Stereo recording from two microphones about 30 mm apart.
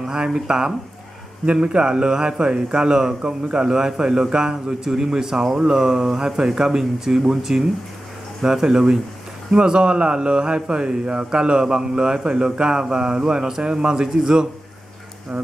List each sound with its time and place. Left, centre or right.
0.0 s a man's voice: right
1.4 s a man's voice: right; by 14.5 s centre